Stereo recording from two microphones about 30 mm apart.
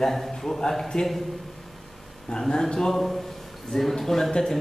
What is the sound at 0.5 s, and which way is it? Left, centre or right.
Speech, left.